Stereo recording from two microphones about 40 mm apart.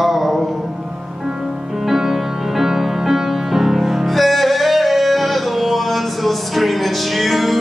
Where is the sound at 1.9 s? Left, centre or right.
Centre.